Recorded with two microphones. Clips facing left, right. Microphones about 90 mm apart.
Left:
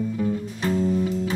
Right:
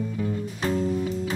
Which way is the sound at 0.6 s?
Centre (ahead or behind).